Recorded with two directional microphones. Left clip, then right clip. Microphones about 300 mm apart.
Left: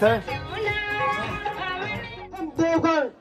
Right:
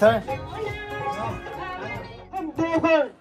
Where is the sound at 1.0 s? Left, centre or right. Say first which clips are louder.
Left 4 dB; centre.